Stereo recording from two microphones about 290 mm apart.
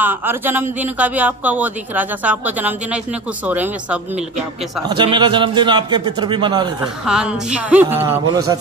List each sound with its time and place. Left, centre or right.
0.0 s a man's voice: centre
4.8 s a man's voice: centre
7.1 s a man's voice: centre